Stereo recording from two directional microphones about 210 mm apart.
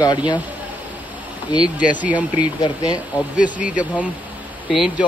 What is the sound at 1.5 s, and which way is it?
Speech, 20° left (ahead or behind).